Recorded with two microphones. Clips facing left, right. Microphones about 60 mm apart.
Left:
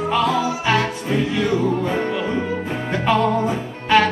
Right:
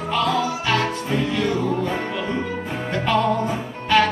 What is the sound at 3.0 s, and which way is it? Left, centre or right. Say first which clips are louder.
Music: left 2 dB; centre.